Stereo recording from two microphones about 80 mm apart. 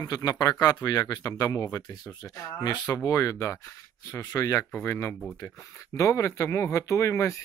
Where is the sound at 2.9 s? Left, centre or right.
Left.